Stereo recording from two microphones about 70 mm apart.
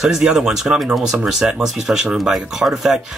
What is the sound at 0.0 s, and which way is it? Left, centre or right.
Speech, centre.